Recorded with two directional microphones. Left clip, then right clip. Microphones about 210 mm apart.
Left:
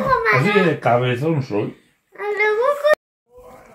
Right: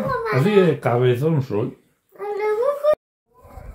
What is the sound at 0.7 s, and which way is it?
Speech, 55° right (ahead or behind).